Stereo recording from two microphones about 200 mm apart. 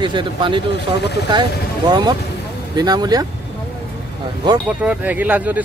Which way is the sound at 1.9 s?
20° right (ahead or behind).